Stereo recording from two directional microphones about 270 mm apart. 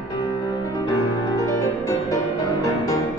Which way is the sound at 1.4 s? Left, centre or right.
Centre.